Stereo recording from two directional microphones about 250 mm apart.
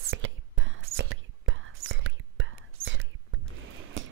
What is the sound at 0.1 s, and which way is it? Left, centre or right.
Whispering, right.